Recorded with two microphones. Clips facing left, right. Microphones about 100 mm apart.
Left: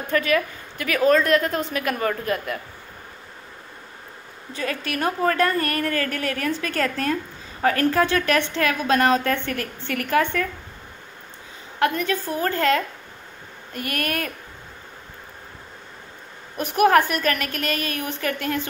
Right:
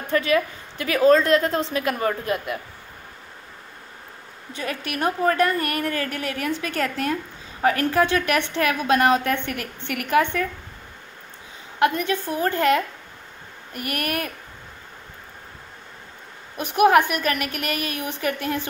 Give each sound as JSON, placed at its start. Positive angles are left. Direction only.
{"t": 0.1, "sound": "a woman's voice", "side_deg": -25}
{"t": 4.6, "sound": "a woman's voice", "side_deg": -20}
{"t": 11.8, "sound": "a woman's voice", "side_deg": -25}
{"t": 16.5, "sound": "a woman's voice", "side_deg": 45}
{"t": 16.8, "sound": "a woman's voice", "side_deg": -10}